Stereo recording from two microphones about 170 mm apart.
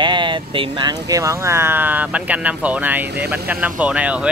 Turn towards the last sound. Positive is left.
turn(degrees=-5)  # may be behind; listen again after turning